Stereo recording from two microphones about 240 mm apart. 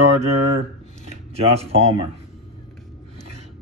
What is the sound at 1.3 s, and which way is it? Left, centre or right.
Speech, right.